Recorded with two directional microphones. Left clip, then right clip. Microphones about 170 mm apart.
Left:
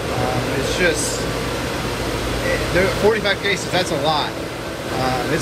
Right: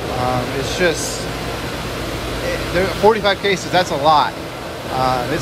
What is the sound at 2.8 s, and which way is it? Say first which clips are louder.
Speech: right 3 dB; 35° right (ahead or behind).